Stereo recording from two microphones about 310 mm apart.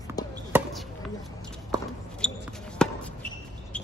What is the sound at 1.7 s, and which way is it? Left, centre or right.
Basketball bounce, centre.